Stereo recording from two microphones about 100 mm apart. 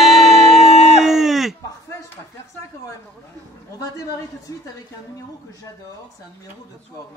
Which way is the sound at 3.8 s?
35° left (ahead or behind).